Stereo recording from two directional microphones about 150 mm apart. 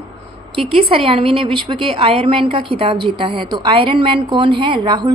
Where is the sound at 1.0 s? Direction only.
40° right (ahead or behind).